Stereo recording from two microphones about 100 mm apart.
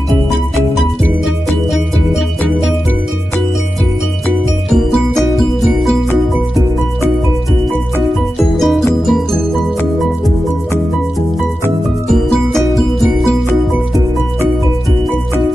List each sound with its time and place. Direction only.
0.7 s music: centre (ahead or behind)
4.6 s music: centre (ahead or behind)
8.4 s music: centre (ahead or behind)
12.1 s music: centre (ahead or behind)